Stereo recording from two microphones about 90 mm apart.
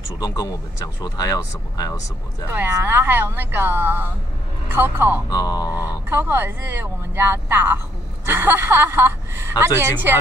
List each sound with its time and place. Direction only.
1.0 s speech: 45° left (ahead or behind)
2.5 s speech: 25° right (ahead or behind)
5.3 s speech: 50° left (ahead or behind)
6.0 s speech: 25° right (ahead or behind)